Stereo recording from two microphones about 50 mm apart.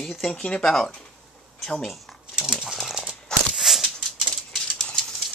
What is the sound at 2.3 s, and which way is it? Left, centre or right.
Dog, centre.